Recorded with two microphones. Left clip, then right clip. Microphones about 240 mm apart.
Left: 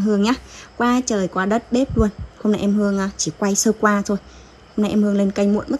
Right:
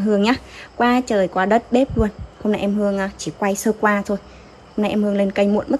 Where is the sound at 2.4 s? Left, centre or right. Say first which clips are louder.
Even; left.